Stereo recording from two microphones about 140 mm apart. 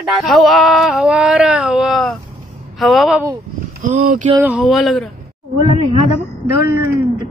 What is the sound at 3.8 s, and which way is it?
Speech, 70° right (ahead or behind).